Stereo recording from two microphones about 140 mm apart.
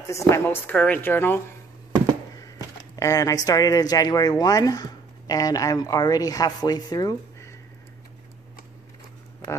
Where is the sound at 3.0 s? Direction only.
25° left (ahead or behind).